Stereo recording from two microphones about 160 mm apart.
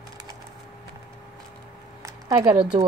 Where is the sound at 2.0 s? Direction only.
20° right (ahead or behind).